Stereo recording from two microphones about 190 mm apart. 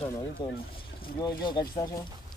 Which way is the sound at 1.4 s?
25° left (ahead or behind).